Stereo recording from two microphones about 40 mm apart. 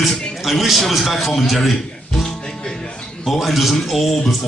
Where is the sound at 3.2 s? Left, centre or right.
Centre.